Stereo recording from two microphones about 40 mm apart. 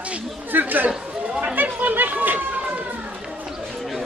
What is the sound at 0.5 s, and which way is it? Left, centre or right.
Chatter, right.